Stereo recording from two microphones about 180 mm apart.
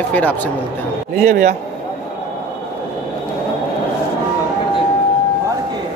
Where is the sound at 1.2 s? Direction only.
45° right (ahead or behind).